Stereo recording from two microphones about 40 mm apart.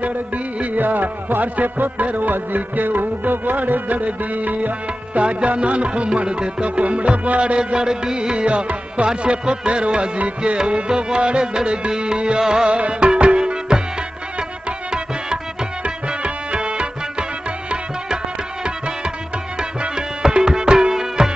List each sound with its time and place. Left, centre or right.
0.7 s music: right; by 12.6 s centre
12.6 s music: right
15.8 s music: right
17.6 s tabla: right
19.8 s music: centre